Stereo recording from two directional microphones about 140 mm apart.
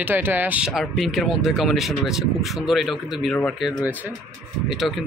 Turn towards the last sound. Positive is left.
turn(degrees=0)  # may be behind; listen again after turning